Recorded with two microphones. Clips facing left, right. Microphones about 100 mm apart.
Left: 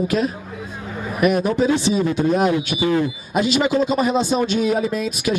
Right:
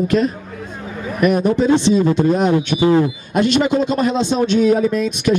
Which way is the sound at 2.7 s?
60° right (ahead or behind).